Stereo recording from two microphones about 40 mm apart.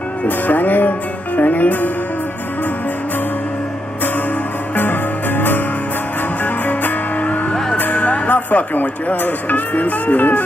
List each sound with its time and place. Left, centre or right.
0.5 s speech: left
4.7 s music: left
8.7 s speech: left